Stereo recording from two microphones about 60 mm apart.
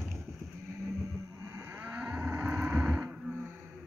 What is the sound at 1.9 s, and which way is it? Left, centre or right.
Cattle, centre.